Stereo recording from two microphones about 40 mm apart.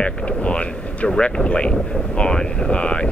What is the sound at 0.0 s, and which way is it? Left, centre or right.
Speech, left.